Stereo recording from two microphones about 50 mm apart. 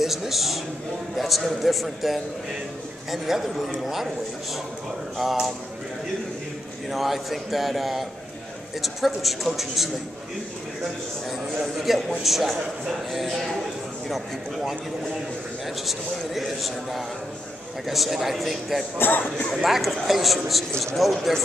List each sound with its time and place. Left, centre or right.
0.0 s a man's voice: centre
5.1 s a man's voice: centre
6.9 s a man's voice: centre
11.2 s a man's voice: centre
18.9 s speech: left
19.5 s a man's voice: centre